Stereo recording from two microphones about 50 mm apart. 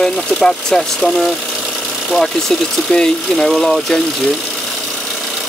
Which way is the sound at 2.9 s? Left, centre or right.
Centre.